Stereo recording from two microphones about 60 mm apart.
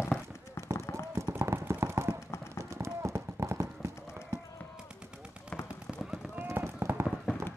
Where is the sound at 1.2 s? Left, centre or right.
Right.